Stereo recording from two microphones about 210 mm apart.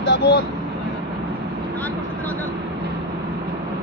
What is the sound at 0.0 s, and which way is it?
Speech, 55° left (ahead or behind).